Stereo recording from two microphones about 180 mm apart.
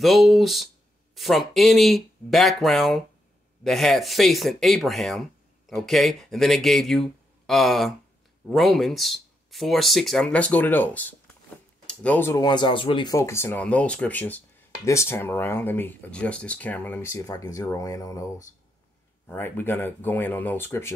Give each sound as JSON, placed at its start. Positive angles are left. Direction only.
{"t": 0.0, "sound": "speech", "side_deg": 0}
{"t": 12.4, "sound": "speech", "side_deg": 25}